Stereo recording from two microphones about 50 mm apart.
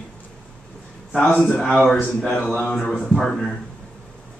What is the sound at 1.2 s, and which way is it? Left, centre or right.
Speech, left.